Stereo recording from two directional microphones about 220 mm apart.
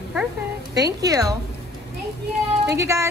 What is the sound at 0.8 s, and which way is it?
Speech, 15° right (ahead or behind).